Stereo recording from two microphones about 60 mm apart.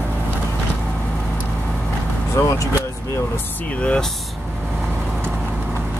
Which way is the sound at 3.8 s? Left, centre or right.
Centre.